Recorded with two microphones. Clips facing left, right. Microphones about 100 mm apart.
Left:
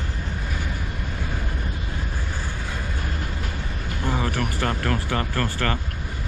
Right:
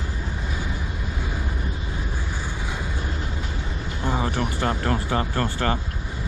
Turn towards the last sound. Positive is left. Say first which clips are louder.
# right 1 dB
turn(degrees=-20)  # may be behind; listen again after turning